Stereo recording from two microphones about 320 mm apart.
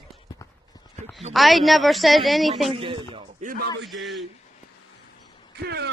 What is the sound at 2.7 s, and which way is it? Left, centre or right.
Speech, centre.